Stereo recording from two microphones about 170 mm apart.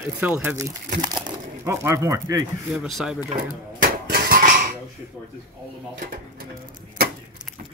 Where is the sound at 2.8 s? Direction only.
Centre (ahead or behind).